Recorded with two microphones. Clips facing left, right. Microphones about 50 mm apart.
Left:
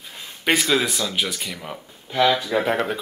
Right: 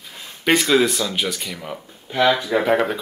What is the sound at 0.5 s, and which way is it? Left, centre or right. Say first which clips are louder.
Speech: right 4 dB; centre.